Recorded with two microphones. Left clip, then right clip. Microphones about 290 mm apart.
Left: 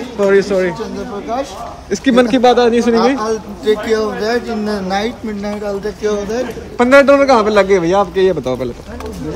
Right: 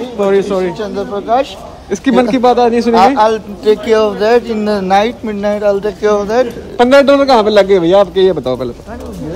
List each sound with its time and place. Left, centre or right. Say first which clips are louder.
0.2 s speech: even; centre
6.8 s speech: right 1 dB; centre